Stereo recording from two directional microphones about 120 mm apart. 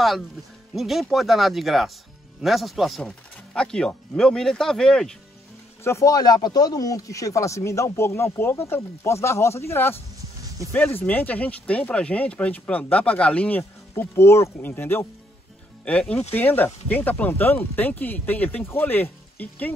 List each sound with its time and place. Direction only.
0.7 s speech: centre (ahead or behind)
5.9 s speech: 25° left (ahead or behind)